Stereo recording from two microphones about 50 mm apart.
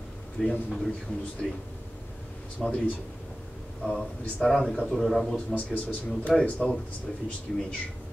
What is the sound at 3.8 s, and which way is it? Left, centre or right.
Speech, left.